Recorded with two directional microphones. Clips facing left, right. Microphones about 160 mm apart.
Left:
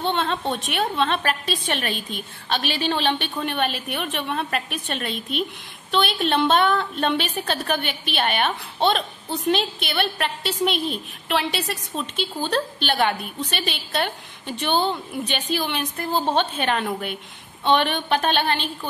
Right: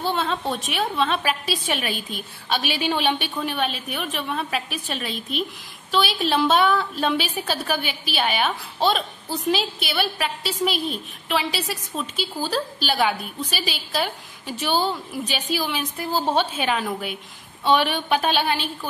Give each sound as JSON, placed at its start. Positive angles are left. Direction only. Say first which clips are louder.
{"t": 0.0, "sound": "a woman's voice", "louder": "left 1 dB", "side_deg": -5}